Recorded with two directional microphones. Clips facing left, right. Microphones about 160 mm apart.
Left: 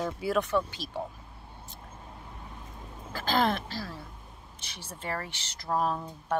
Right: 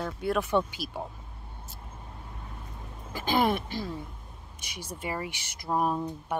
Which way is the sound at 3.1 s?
15° right (ahead or behind).